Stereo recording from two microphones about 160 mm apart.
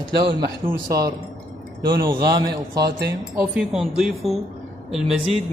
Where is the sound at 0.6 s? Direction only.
20° right (ahead or behind).